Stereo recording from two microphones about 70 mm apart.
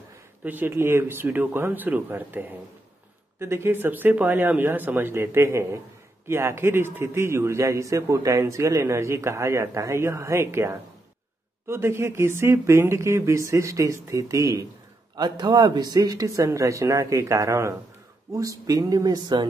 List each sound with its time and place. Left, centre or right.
0.4 s a man's voice: right
15.1 s a man's voice: right